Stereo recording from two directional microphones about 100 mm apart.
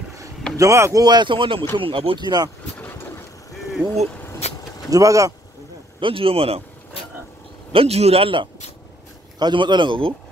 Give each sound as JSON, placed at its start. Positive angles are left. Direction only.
{"t": 0.6, "sound": "speech", "side_deg": -30}
{"t": 1.0, "sound": "speech", "side_deg": -50}
{"t": 2.2, "sound": "a man's voice", "side_deg": -40}
{"t": 2.8, "sound": "vehicle", "side_deg": 20}
{"t": 3.8, "sound": "a man's voice", "side_deg": -50}
{"t": 4.4, "sound": "vehicle", "side_deg": 90}
{"t": 4.9, "sound": "speech", "side_deg": -35}
{"t": 5.9, "sound": "a man's voice", "side_deg": -65}
{"t": 7.7, "sound": "a man's voice", "side_deg": -85}
{"t": 9.4, "sound": "a man's voice", "side_deg": -50}